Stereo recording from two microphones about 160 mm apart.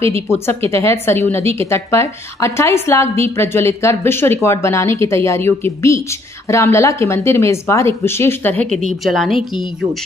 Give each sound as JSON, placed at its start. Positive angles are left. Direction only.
{"t": 0.0, "sound": "a woman's voice", "side_deg": 15}